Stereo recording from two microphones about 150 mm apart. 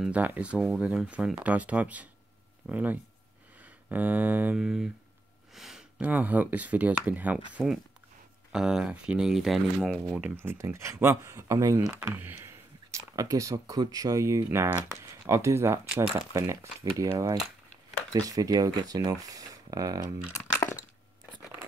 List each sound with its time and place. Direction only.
0.0 s speech: 10° right (ahead or behind)
12.9 s speech: 25° right (ahead or behind)
20.3 s a sound: 20° left (ahead or behind)